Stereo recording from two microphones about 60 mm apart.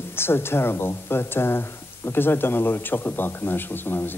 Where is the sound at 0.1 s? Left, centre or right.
Left.